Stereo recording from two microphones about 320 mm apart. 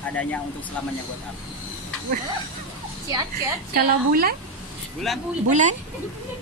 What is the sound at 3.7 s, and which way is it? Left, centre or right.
Speech, right.